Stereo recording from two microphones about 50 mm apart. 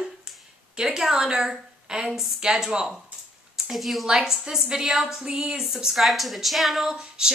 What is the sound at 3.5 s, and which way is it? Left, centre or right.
Speech, centre.